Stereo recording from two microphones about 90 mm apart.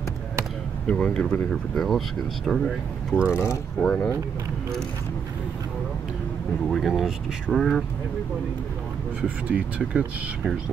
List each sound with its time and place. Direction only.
0.8 s speech: 15° left (ahead or behind)
3.3 s speech: 30° left (ahead or behind)
3.8 s speech: 10° left (ahead or behind)
6.7 s speech: centre (ahead or behind)
9.5 s speech: 15° right (ahead or behind)